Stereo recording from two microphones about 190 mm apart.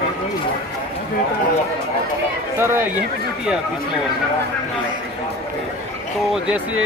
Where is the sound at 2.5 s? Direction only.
10° right (ahead or behind).